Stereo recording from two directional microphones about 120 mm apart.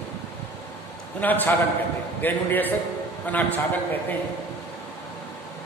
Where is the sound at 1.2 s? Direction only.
15° left (ahead or behind).